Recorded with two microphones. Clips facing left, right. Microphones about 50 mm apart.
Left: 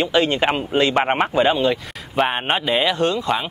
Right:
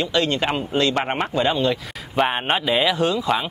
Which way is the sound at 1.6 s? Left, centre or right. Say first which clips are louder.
Left 2 dB; centre.